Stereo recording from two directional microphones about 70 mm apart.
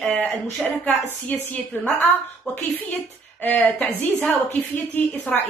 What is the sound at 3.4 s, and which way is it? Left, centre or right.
A woman's voice, left.